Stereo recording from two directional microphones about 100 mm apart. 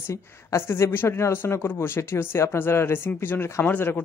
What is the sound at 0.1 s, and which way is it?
Speech, 30° left (ahead or behind).